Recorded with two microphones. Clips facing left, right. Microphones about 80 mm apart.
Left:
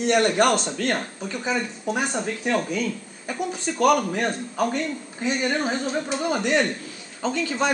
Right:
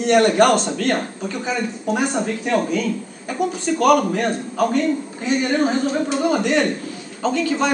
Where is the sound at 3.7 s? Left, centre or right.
Centre.